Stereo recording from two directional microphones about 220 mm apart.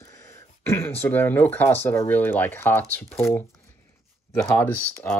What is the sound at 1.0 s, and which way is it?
Speech, 10° left (ahead or behind).